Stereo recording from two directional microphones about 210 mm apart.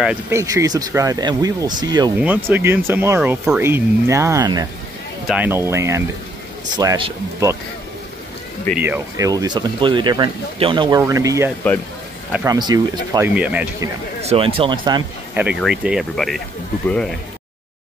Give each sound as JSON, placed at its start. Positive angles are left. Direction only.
{"t": 0.0, "sound": "speech", "side_deg": -10}
{"t": 2.1, "sound": "speech", "side_deg": -10}
{"t": 8.7, "sound": "speech", "side_deg": -10}
{"t": 13.3, "sound": "speech", "side_deg": -5}
{"t": 14.2, "sound": "speech", "side_deg": -25}
{"t": 15.3, "sound": "speech", "side_deg": -5}